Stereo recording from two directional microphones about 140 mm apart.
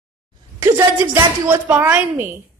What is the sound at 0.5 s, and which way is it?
A woman's voice, 15° right (ahead or behind).